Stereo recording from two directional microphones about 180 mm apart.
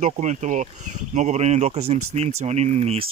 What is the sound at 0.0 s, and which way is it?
Speech, 40° right (ahead or behind).